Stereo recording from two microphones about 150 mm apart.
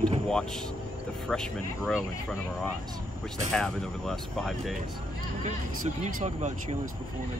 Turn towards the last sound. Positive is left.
turn(degrees=-50)  # may be behind; listen again after turning